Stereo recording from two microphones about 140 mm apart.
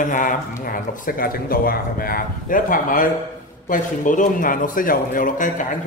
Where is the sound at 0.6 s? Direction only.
85° left.